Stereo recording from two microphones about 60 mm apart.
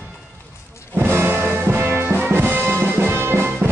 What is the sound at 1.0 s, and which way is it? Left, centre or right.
Music, right.